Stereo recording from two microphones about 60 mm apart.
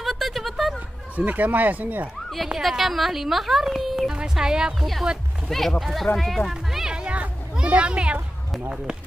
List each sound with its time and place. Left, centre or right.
0.0 s a sound: centre
1.1 s speech: right
2.6 s a woman's voice: centre
4.1 s speech: centre
5.5 s a woman's voice: centre
6.5 s music: centre
7.5 s a child's voice: centre